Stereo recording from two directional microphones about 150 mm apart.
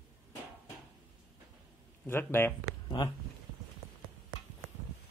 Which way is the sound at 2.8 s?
30° left (ahead or behind).